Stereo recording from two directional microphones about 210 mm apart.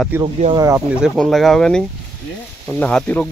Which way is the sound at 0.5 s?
15° right (ahead or behind).